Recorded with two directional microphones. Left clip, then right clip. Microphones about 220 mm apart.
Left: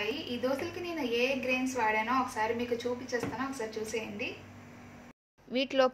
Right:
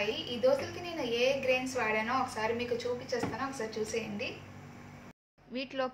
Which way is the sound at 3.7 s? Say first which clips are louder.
Right 1 dB; 5° left (ahead or behind).